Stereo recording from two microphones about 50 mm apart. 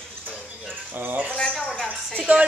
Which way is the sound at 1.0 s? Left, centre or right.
Right.